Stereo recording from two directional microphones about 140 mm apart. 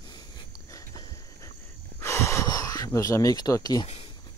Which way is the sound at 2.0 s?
20° left (ahead or behind).